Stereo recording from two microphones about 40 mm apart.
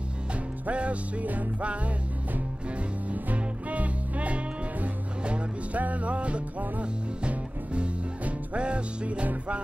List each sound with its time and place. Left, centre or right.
0.7 s music: right
3.1 s music: right